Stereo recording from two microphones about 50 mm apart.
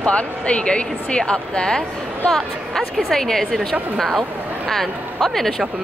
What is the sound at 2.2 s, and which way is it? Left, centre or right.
A woman's voice, centre.